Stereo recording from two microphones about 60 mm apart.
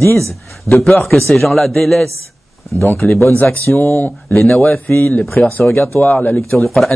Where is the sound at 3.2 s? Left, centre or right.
Left.